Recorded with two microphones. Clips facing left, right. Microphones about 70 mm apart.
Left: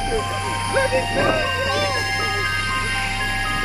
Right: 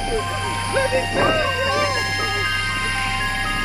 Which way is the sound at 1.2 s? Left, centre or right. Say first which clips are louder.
Right 1 dB; right.